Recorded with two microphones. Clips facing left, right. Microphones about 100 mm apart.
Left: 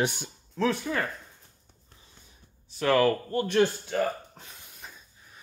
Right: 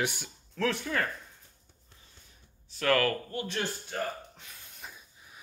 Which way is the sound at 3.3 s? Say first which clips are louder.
Left 9 dB; 55° left (ahead or behind).